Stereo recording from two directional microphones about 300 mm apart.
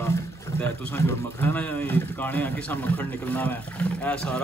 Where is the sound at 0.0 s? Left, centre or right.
Centre.